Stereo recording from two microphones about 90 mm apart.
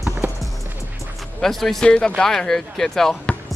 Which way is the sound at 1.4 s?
5° left (ahead or behind).